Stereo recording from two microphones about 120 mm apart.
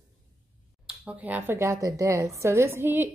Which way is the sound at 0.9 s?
10° right (ahead or behind).